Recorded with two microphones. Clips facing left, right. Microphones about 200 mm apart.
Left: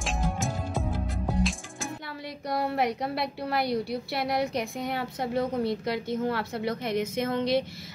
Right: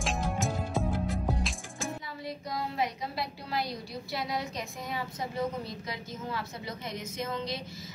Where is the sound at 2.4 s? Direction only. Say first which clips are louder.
Left 7 dB; 65° left (ahead or behind).